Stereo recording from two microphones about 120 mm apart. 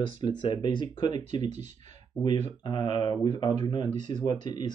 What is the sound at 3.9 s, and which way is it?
Speech, 80° right.